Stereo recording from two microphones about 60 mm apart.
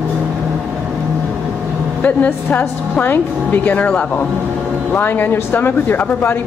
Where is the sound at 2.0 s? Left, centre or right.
Left.